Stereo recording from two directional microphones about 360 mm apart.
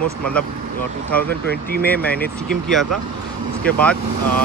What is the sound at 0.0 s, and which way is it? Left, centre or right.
Speech, centre.